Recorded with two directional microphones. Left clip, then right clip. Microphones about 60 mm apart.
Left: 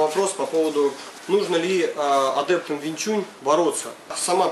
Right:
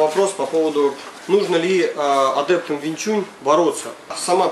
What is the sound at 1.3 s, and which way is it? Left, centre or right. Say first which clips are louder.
Speech: right 4 dB; centre.